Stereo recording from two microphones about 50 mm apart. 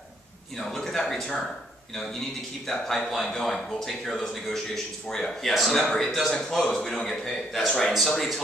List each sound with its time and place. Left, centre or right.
0.6 s speech: centre
2.6 s a man's voice: centre